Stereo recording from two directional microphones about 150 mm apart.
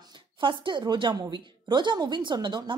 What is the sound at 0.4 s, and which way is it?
A woman's voice, 30° right (ahead or behind).